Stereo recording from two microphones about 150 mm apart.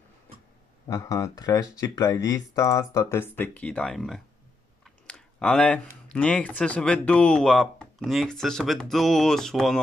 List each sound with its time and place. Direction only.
0.8 s speech: 20° left (ahead or behind); by 9.8 s centre (ahead or behind)